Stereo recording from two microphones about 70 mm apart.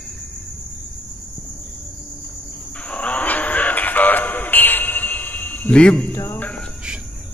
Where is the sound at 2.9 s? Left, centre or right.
Centre.